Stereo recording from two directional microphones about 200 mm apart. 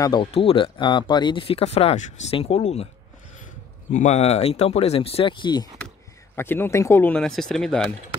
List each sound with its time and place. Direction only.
0.0 s speech: 25° left (ahead or behind)
3.9 s speech: 35° left (ahead or behind)
6.3 s speech: 10° left (ahead or behind)